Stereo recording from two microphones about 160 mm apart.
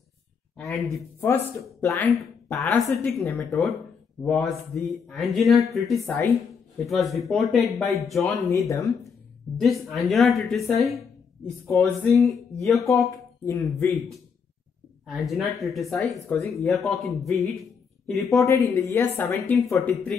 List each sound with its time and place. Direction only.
0.6 s a sound: centre (ahead or behind)
1.2 s a woman's voice: 15° left (ahead or behind)
2.5 s speech: 5° left (ahead or behind)
4.8 s speech: centre (ahead or behind)
8.2 s speech: 20° left (ahead or behind)
9.6 s speech: centre (ahead or behind)
12.8 s speech: 20° left (ahead or behind)
15.0 s speech: centre (ahead or behind)
16.2 s a woman's voice: 15° left (ahead or behind)
16.5 s speech: centre (ahead or behind)
17.3 s a sound: centre (ahead or behind)
18.3 s a woman's voice: 20° left (ahead or behind)